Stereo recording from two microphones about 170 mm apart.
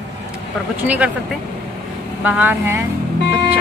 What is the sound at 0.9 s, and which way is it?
Speech, 10° right (ahead or behind).